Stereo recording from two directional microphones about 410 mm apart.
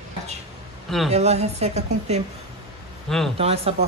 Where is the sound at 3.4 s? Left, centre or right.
Centre.